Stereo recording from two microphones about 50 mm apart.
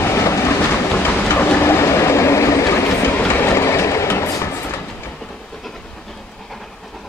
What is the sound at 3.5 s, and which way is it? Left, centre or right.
Train, left.